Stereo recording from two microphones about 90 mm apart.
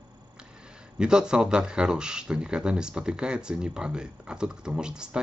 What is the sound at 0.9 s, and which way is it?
Speech, 10° right (ahead or behind).